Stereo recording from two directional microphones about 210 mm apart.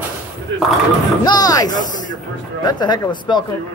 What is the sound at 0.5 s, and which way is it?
Speech, 60° right (ahead or behind).